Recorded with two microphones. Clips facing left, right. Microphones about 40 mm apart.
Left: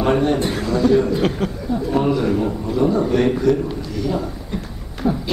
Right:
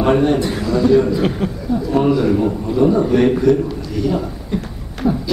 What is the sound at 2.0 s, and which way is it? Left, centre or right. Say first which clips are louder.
A man's voice: right 4 dB; centre.